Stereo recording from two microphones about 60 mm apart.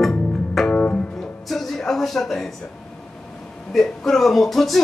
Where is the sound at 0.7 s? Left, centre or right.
Centre.